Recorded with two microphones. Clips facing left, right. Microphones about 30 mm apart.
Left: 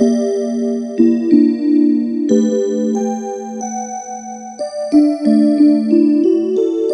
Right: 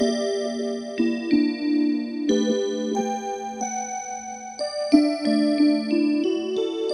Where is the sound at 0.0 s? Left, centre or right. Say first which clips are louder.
Left 9 dB; right.